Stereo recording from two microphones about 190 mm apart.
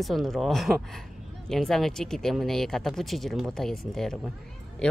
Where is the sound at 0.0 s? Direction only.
Centre (ahead or behind).